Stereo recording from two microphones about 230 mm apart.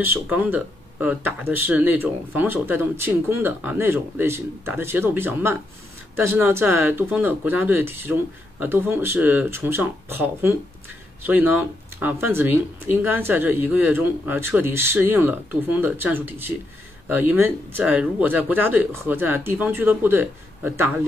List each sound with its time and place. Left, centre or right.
0.0 s speech: centre